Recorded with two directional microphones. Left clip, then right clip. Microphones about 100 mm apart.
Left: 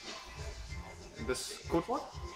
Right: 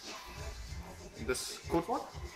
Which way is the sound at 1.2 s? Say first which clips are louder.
Right 1 dB; 15° left (ahead or behind).